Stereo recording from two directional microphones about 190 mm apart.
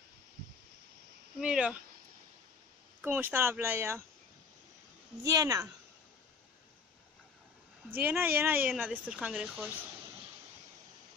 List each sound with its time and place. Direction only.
1.4 s speech: 5° right (ahead or behind)
3.0 s speech: 10° right (ahead or behind)
5.2 s speech: 20° right (ahead or behind)
7.9 s speech: 10° right (ahead or behind)